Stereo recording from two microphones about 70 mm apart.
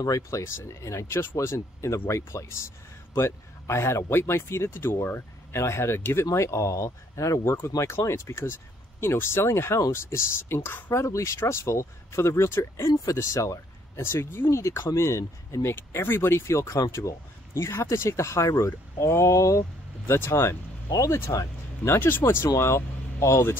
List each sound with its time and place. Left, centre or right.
0.0 s speech: left
7.4 s speech: left
12.8 s speech: left
17.6 s speech: left
20.1 s speech: left
20.9 s speech: left
22.6 s vehicle: left
23.2 s speech: left